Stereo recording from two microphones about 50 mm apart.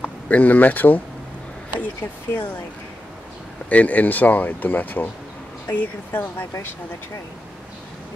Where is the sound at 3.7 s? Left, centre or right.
Left.